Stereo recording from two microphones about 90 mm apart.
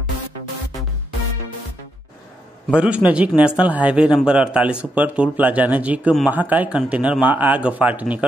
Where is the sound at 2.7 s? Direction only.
15° right (ahead or behind).